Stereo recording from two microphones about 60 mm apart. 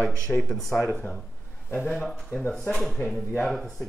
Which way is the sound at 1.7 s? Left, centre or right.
Left.